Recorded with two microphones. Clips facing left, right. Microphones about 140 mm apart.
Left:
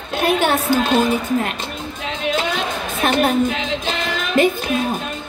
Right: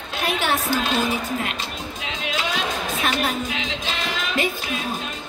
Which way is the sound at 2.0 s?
50° left (ahead or behind).